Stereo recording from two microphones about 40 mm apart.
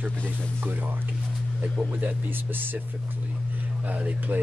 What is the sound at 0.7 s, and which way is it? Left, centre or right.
Speech, right.